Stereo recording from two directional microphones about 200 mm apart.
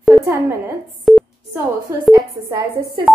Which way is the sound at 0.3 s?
15° right (ahead or behind).